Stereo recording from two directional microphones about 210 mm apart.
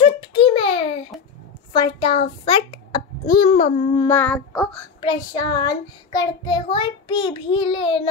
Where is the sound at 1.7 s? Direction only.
20° left (ahead or behind).